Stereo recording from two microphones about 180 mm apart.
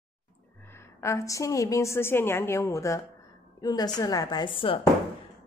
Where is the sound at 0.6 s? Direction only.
15° left (ahead or behind).